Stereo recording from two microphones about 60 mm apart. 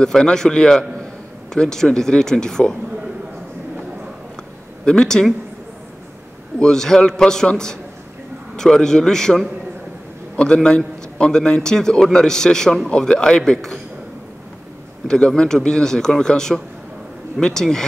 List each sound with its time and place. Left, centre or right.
0.0 s a man's voice: centre
4.8 s speech: centre
6.6 s a man's voice: centre
15.0 s a man's voice: centre